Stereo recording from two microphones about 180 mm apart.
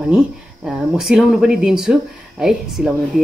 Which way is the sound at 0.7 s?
5° right (ahead or behind).